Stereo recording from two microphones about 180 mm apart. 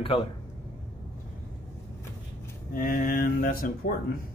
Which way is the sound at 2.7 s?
50° left (ahead or behind).